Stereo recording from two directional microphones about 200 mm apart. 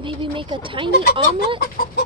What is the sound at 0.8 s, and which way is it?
Speech, 50° left (ahead or behind).